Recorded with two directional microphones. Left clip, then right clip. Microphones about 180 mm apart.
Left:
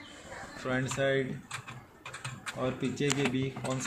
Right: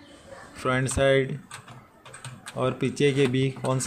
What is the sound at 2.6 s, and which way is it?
Speech, 50° right (ahead or behind).